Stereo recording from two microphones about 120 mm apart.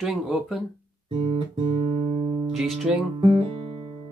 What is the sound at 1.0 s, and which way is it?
Guitar, 45° right (ahead or behind).